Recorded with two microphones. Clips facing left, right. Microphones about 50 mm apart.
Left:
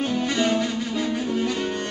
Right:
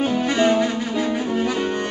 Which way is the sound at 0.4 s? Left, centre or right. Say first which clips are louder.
Right 6 dB; centre.